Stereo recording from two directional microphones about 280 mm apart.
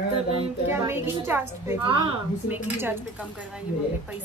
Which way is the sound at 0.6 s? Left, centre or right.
Centre.